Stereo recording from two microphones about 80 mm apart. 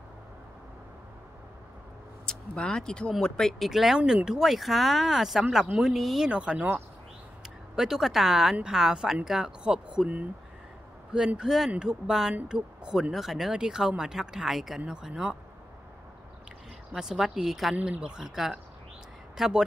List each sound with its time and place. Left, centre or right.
2.2 s speech: centre
6.3 s speech: centre
16.9 s speech: centre
17.7 s speech: centre